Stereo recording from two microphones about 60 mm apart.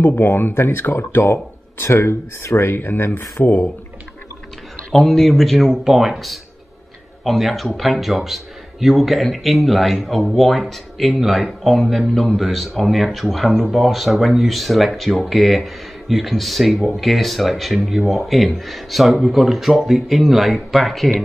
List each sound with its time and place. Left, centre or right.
0.0 s speech: left
4.9 s speech: centre